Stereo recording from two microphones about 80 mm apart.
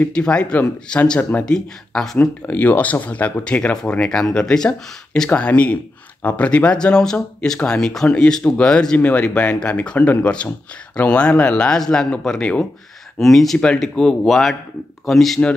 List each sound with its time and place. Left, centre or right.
0.1 s speech: centre
2.1 s speech: left; by 15.4 s centre